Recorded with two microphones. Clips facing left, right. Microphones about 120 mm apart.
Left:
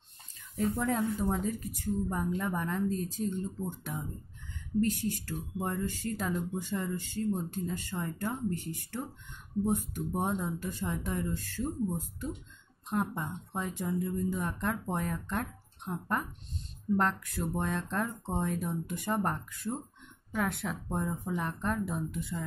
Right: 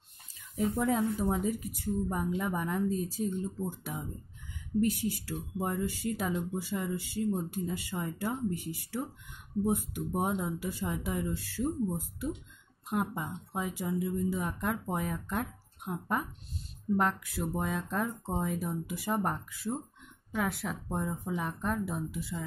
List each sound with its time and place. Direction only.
0.6 s speech: 10° right (ahead or behind)